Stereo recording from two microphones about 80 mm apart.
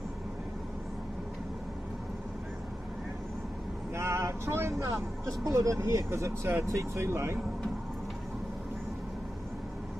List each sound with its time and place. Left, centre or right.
3.9 s vehicle: right
5.4 s speech: right